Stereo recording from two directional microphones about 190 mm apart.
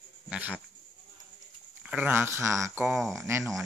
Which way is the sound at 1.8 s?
5° right (ahead or behind).